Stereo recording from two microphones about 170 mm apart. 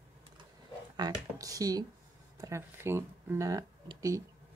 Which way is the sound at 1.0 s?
20° right (ahead or behind).